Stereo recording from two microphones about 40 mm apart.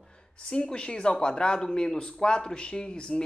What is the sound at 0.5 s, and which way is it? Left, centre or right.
Speech, left.